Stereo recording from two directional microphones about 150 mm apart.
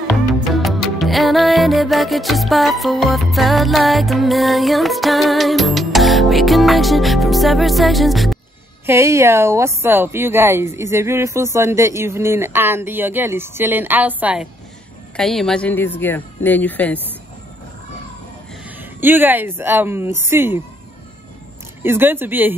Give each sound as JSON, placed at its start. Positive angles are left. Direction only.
{"t": 0.1, "sound": "music", "side_deg": 0}
{"t": 8.8, "sound": "speech", "side_deg": -20}
{"t": 15.1, "sound": "speech", "side_deg": 5}
{"t": 18.8, "sound": "speech", "side_deg": -15}
{"t": 21.8, "sound": "speech", "side_deg": -15}